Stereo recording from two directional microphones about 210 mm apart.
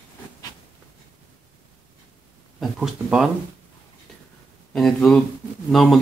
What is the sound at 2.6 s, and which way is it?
Speech, centre (ahead or behind).